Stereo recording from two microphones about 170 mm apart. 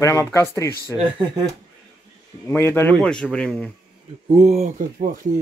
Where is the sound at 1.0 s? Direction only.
30° right (ahead or behind).